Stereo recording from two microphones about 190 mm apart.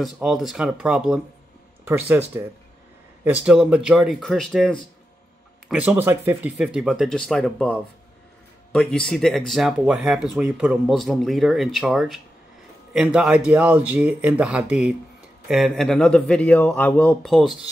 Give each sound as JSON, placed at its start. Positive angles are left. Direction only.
{"t": 0.0, "sound": "speech", "side_deg": 0}